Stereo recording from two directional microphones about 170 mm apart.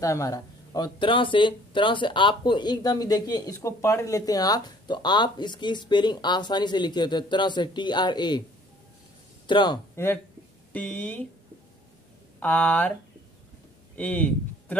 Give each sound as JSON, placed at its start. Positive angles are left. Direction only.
{"t": 0.0, "sound": "speech", "side_deg": 20}
{"t": 9.5, "sound": "speech", "side_deg": 25}
{"t": 10.0, "sound": "speech", "side_deg": 15}
{"t": 12.4, "sound": "speech", "side_deg": 10}
{"t": 13.9, "sound": "speech", "side_deg": 10}